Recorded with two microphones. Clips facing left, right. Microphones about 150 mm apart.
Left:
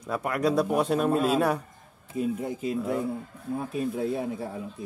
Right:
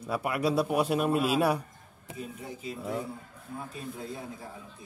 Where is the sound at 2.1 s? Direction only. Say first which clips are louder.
Left 12 dB; 60° left (ahead or behind).